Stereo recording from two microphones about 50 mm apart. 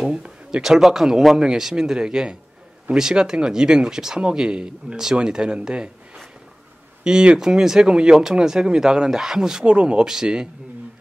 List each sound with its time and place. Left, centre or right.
0.0 s speech: centre
7.1 s speech: centre
9.7 s speech: right